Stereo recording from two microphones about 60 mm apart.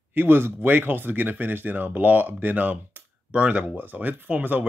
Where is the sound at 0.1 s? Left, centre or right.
Right.